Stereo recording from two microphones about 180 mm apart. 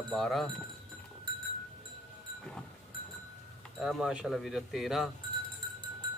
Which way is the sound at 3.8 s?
Centre (ahead or behind).